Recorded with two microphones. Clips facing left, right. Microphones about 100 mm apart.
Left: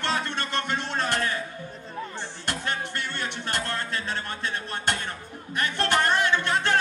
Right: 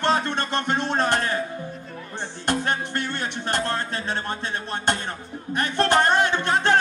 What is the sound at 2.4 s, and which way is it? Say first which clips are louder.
Music: right 6 dB; 40° right (ahead or behind).